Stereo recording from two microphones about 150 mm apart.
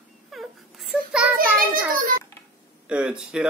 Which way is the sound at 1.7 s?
65° right (ahead or behind).